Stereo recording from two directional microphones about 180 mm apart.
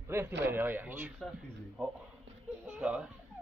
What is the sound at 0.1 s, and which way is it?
Speech, 15° right (ahead or behind).